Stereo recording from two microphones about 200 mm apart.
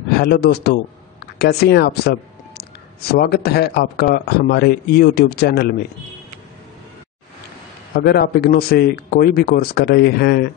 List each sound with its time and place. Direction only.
0.2 s speech: 55° left (ahead or behind)
7.9 s speech: 55° left (ahead or behind)